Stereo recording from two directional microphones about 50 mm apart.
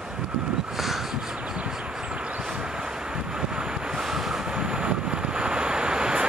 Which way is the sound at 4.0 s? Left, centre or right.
Centre.